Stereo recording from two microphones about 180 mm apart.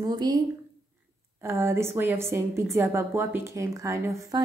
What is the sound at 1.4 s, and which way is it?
A woman's voice, 15° right (ahead or behind).